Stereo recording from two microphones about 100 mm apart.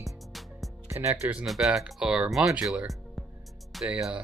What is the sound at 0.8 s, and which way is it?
Speech, 25° right (ahead or behind).